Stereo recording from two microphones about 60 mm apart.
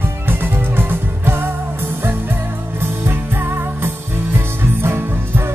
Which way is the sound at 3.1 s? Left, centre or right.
Right.